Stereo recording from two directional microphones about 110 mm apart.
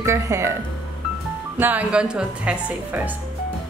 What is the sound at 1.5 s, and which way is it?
Speech, 15° right (ahead or behind).